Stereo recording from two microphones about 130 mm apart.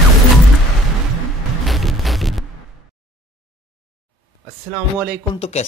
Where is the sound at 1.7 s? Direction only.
Centre (ahead or behind).